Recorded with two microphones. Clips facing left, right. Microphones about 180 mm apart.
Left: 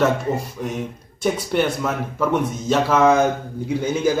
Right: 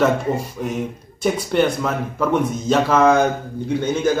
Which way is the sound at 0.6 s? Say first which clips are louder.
Right 2 dB; centre (ahead or behind).